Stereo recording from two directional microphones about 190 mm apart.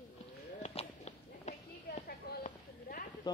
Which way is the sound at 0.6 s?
35° left (ahead or behind).